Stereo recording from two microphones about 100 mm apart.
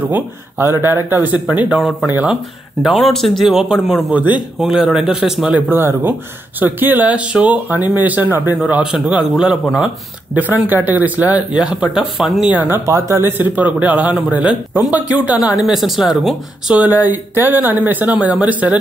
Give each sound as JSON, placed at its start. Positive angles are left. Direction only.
{"t": 0.1, "sound": "speech", "side_deg": -25}
{"t": 1.8, "sound": "speech", "side_deg": 0}
{"t": 5.7, "sound": "speech", "side_deg": -20}
{"t": 12.4, "sound": "speech", "side_deg": -20}
{"t": 15.6, "sound": "speech", "side_deg": -5}
{"t": 16.7, "sound": "speech", "side_deg": -15}